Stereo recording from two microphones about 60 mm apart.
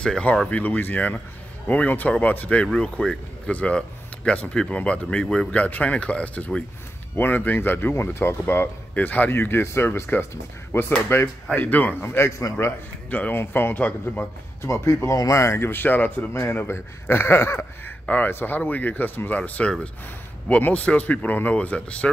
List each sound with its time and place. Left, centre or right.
0.0 s speech: centre
0.5 s speech: left
2.7 s speech: centre; by 7.9 s left
7.9 s speech: left
8.9 s speech: left
12.3 s a man's voice: left
13.3 s speech: left
14.6 s a man's voice: left
16.4 s speech: left
18.0 s speech: left